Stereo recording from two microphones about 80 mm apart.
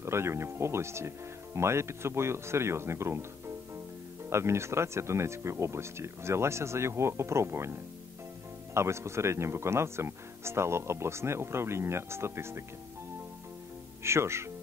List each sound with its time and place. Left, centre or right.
0.0 s speech: right
14.0 s speech: right